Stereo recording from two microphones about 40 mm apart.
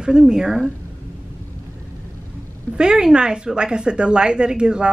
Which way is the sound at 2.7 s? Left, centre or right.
Right.